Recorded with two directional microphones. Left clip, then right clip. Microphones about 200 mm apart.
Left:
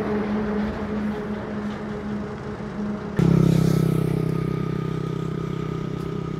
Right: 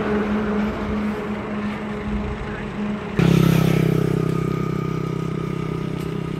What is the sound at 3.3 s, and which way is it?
Vehicle, 25° right (ahead or behind).